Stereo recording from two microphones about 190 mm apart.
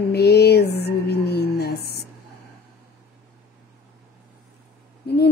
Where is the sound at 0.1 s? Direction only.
60° left (ahead or behind).